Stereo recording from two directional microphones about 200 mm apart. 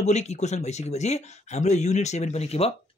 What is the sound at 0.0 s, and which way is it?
Speech, 35° left (ahead or behind).